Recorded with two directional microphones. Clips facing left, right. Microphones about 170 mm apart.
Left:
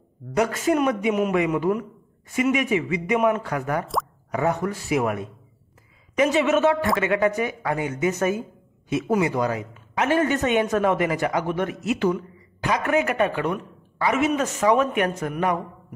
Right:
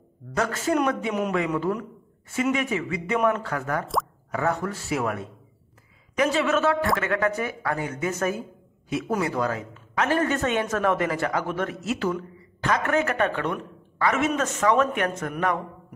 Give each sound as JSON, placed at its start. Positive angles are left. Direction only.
{"t": 0.4, "sound": "speech", "side_deg": 15}